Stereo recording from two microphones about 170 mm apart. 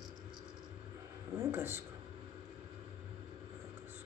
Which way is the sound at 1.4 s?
15° right (ahead or behind).